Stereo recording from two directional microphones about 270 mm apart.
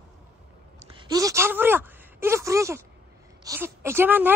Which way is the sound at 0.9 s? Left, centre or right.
Centre.